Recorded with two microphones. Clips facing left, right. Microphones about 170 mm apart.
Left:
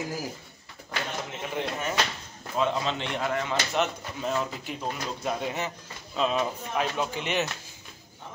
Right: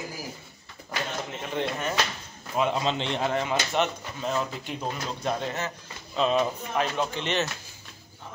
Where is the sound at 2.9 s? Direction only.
25° right (ahead or behind).